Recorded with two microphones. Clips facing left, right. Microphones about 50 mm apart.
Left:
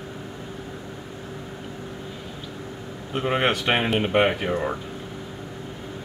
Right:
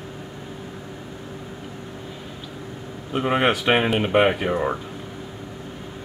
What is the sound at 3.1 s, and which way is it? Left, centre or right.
Speech, centre.